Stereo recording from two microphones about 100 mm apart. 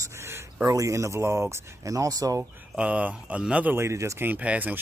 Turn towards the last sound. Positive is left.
turn(degrees=-15)  # may be behind; listen again after turning